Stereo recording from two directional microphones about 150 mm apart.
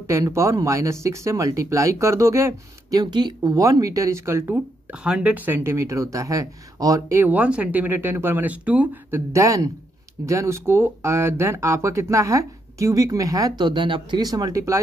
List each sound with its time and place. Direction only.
0.1 s speech: 20° right (ahead or behind)
5.0 s speech: 5° right (ahead or behind)